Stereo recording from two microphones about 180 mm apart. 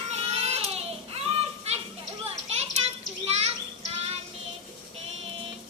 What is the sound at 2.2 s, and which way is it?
Children playing, 35° right (ahead or behind).